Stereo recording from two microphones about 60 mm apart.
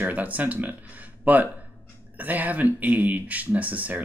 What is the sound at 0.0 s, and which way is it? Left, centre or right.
Speech, right.